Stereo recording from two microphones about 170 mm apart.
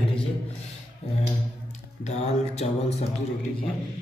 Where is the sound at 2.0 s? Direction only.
40° left (ahead or behind).